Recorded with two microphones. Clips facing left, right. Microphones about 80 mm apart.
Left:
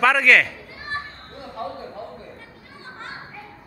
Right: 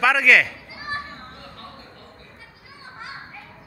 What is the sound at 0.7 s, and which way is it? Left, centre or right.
Children playing, centre.